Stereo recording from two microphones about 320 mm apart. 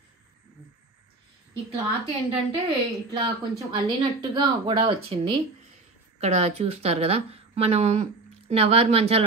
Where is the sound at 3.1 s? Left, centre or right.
Centre.